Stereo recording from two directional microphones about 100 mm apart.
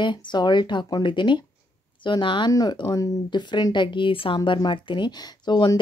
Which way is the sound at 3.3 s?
50° left (ahead or behind).